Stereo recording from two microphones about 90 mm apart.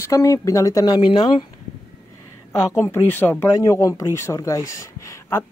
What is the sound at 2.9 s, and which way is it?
Speech, 25° left (ahead or behind).